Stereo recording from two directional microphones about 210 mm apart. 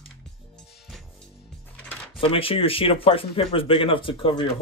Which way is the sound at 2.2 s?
25° left (ahead or behind).